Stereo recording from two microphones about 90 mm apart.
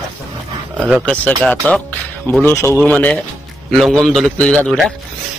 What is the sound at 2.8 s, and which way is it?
Speech, 15° left (ahead or behind).